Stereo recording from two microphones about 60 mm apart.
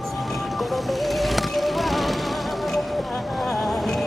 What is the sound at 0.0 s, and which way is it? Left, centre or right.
Music, centre.